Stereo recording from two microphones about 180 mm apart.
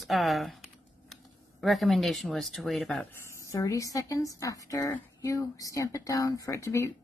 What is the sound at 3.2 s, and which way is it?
Speech, 15° left (ahead or behind).